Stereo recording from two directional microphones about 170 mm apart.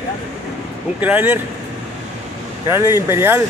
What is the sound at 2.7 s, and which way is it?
Speech, 15° right (ahead or behind).